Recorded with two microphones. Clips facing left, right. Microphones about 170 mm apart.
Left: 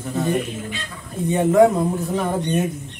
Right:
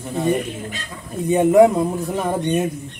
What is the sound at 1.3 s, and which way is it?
Speech, 20° right (ahead or behind).